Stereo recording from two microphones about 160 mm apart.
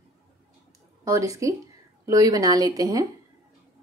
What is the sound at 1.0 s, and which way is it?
A woman's voice, 20° right (ahead or behind).